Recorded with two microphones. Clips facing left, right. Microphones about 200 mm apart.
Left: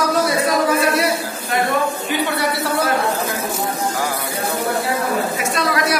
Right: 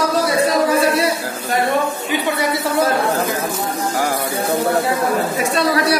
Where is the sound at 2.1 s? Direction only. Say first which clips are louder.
Right 1 dB; 20° right (ahead or behind).